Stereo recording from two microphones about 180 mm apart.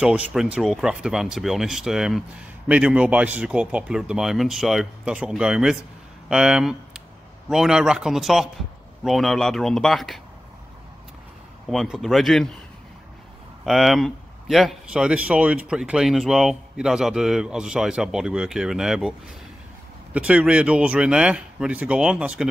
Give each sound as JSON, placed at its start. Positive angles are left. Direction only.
{"t": 0.0, "sound": "a man's voice", "side_deg": -5}
{"t": 11.7, "sound": "a man's voice", "side_deg": 0}
{"t": 13.7, "sound": "a man's voice", "side_deg": 0}
{"t": 20.2, "sound": "speech", "side_deg": -5}